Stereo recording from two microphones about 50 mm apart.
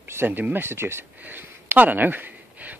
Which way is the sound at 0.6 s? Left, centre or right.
Right.